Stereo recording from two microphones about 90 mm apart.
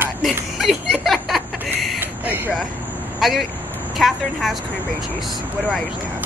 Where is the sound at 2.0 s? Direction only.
20° right (ahead or behind).